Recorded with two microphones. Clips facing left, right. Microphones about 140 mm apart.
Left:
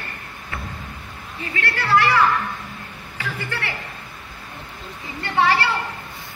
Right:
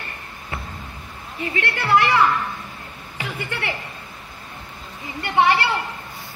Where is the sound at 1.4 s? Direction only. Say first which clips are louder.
Right 1 dB; 25° right (ahead or behind).